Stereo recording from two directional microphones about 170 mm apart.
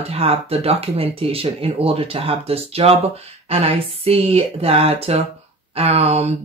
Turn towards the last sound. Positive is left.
turn(degrees=-40)  # may be behind; listen again after turning